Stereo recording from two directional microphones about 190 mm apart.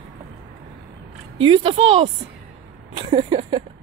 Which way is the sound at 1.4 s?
30° right (ahead or behind).